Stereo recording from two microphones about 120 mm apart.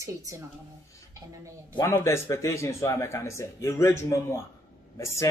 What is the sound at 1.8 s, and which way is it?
Speech, 25° left (ahead or behind).